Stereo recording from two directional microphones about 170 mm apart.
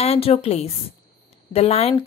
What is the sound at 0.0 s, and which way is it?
A woman's voice, 35° left (ahead or behind).